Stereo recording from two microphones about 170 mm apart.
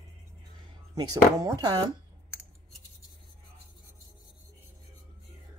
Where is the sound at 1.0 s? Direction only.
20° right (ahead or behind).